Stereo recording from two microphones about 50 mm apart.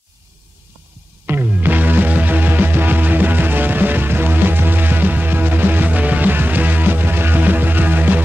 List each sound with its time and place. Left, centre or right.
1.2 s music: right